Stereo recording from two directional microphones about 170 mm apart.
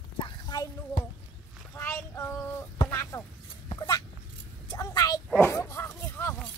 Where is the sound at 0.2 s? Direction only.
25° left (ahead or behind).